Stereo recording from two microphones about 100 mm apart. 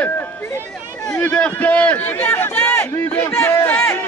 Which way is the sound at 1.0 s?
15° left (ahead or behind).